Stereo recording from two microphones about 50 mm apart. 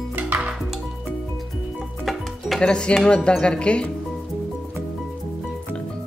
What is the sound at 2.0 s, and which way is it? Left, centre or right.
Music, centre.